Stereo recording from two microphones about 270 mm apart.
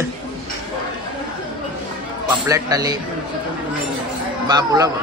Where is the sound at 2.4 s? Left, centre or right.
Centre.